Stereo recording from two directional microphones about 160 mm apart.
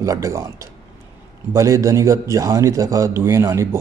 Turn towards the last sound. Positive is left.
turn(degrees=-20)  # may be behind; listen again after turning